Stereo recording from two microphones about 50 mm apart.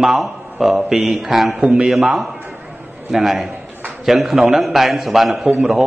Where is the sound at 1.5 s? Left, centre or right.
Centre.